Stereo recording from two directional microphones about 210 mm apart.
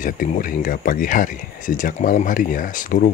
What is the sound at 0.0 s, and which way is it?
Speech, 40° left (ahead or behind).